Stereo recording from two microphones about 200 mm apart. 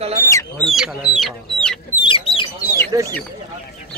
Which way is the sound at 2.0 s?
25° left (ahead or behind).